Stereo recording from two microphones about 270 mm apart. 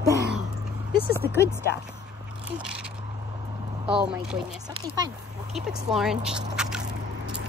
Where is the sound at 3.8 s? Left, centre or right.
Centre.